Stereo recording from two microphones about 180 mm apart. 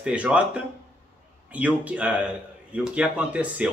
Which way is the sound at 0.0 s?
5° right (ahead or behind).